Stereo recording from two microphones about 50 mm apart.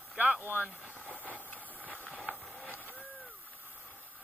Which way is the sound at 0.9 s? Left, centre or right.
Left.